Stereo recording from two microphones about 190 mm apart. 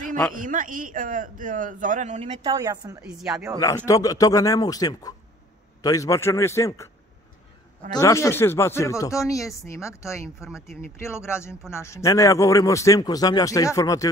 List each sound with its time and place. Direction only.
0.4 s a man's voice: 45° right (ahead or behind)
2.4 s a woman's voice: 20° right (ahead or behind)
3.2 s speech: centre (ahead or behind)
3.5 s a man's voice: 20° left (ahead or behind)
7.9 s speech: 15° left (ahead or behind)
10.4 s speech: 5° right (ahead or behind)
10.8 s speech: 15° left (ahead or behind)